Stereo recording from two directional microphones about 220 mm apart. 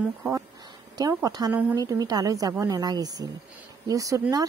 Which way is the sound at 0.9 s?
15° right (ahead or behind).